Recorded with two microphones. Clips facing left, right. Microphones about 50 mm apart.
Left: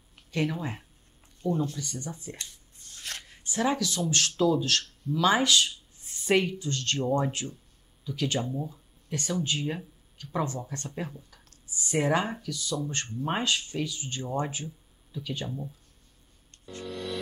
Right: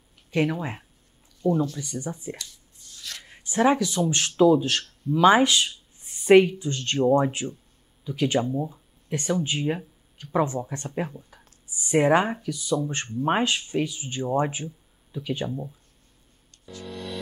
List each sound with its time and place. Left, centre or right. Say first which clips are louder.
0.3 s speech: right 5 dB; right
1.4 s speech: right 5 dB; right
1.8 s speech: right 5 dB; centre
2.3 s a sound: right 2 dB; left
3.3 s a man's voice: right 7 dB; right
16.8 s music: left 1 dB; centre